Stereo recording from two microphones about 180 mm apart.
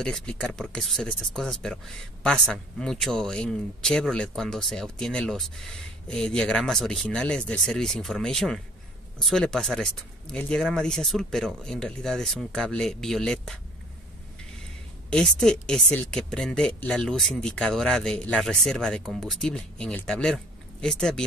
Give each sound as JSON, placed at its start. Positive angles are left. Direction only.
{"t": 0.0, "sound": "speech", "side_deg": 5}
{"t": 15.0, "sound": "speech", "side_deg": 5}